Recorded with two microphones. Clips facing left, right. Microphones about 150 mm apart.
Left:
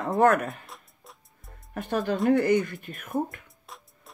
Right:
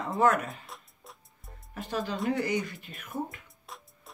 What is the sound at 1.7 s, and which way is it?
Speech, 55° left (ahead or behind).